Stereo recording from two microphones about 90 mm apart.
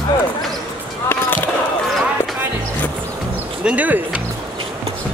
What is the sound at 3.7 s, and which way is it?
Speech, 15° right (ahead or behind).